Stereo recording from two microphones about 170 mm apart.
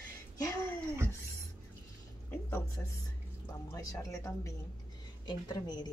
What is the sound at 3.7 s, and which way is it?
Speech, 20° left (ahead or behind).